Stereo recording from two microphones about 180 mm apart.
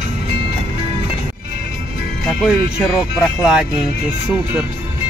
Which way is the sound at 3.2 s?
5° right (ahead or behind).